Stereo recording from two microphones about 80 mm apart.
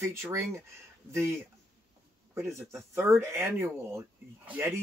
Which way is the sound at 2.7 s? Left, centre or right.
Right.